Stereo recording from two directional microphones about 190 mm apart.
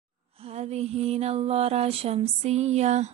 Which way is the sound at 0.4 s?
35° right (ahead or behind).